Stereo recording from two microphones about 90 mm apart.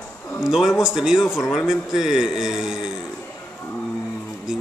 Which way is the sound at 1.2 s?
30° left (ahead or behind).